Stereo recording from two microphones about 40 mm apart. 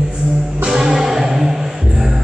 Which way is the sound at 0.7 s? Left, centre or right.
Centre.